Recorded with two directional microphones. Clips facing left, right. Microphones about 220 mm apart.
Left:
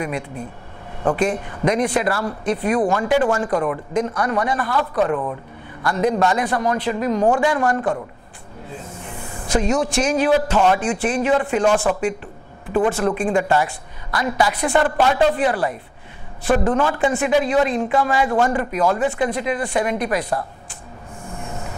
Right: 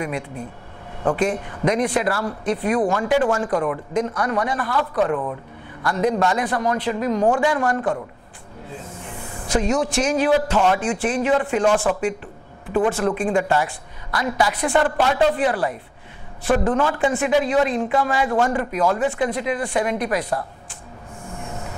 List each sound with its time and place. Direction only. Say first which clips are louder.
1.1 s a man's voice: left 1 dB; 20° left (ahead or behind)
9.0 s a sound: left 1 dB; 20° left (ahead or behind)
9.8 s a man's voice: left 1 dB; 10° left (ahead or behind)
21.5 s train: left 1 dB; 25° left (ahead or behind)